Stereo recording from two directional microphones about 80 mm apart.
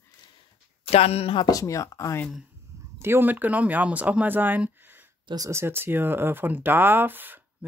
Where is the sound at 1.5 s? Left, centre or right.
Left.